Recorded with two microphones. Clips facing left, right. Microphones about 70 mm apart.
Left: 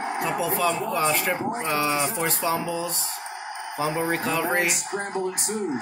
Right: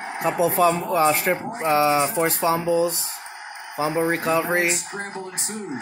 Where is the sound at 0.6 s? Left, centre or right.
Right.